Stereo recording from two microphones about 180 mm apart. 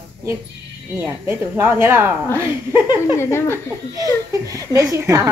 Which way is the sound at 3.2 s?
15° left (ahead or behind).